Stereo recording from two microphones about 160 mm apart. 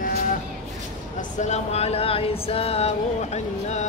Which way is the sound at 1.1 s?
50° left (ahead or behind).